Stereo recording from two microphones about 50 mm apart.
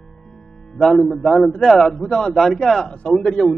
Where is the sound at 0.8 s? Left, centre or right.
Centre.